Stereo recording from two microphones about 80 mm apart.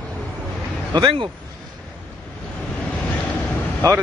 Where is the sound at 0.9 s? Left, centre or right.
Right.